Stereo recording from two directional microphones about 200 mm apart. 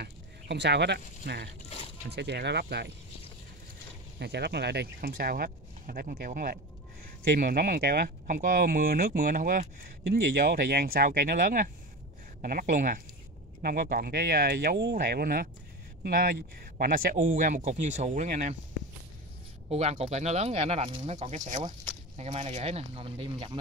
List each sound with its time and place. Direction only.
0.0 s speech: 55° right (ahead or behind)
4.2 s speech: 55° right (ahead or behind); by 18.6 s 40° right (ahead or behind)
19.7 s speech: 30° right (ahead or behind)